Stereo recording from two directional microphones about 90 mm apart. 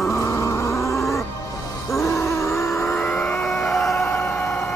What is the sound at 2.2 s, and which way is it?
Vehicle, 30° left (ahead or behind).